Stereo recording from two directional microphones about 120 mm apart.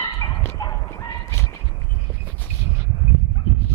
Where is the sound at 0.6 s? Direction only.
25° left (ahead or behind).